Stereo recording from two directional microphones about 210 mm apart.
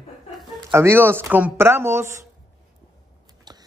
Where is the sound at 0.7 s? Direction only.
10° right (ahead or behind).